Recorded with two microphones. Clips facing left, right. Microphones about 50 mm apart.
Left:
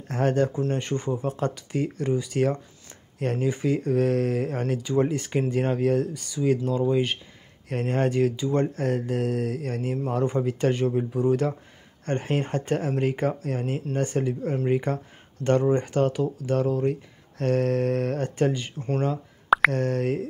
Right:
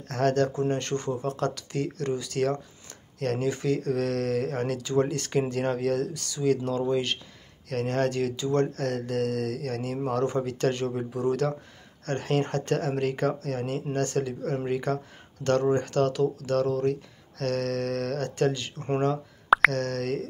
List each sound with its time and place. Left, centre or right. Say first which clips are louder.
0.1 s speech: left 1 dB; centre